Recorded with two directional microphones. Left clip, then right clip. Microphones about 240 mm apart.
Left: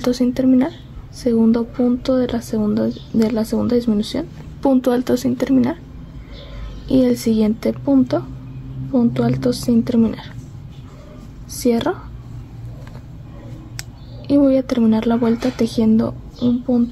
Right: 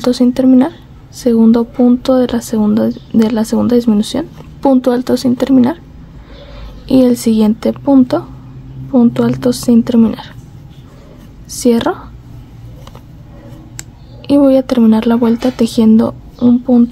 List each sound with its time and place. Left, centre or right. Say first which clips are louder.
0.0 s speech: right 6 dB; centre
6.9 s speech: right 6 dB; centre
11.6 s speech: right 6 dB; centre
14.2 s speech: right 6 dB; centre